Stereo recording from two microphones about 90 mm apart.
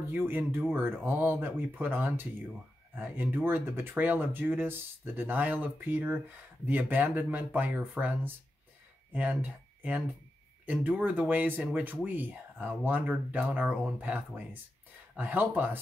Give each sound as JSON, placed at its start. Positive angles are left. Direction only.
{"t": 0.1, "sound": "speech", "side_deg": -25}